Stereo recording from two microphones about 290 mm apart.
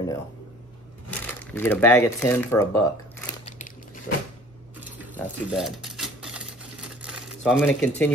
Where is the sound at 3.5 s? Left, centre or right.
Left.